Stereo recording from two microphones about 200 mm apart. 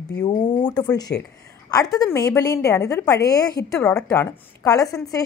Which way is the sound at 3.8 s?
5° left (ahead or behind).